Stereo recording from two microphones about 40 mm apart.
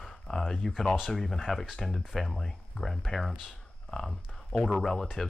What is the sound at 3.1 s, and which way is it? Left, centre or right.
Speech, centre.